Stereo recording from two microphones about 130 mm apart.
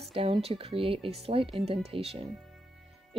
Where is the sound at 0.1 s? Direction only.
50° right (ahead or behind).